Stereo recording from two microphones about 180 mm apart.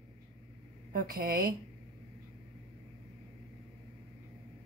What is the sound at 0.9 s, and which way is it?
Speech, 55° right (ahead or behind).